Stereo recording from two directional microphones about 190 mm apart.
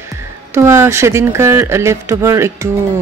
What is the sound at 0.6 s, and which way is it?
Speech, 15° right (ahead or behind).